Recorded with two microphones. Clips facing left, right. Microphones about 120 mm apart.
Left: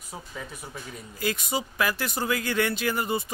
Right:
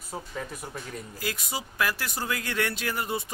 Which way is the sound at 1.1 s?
Centre (ahead or behind).